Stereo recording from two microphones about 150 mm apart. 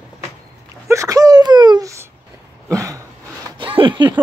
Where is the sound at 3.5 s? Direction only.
35° right (ahead or behind).